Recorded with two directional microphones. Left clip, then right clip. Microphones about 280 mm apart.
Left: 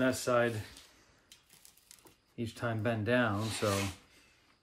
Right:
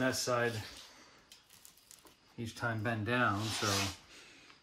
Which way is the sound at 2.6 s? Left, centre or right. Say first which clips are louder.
Left 1 dB; centre.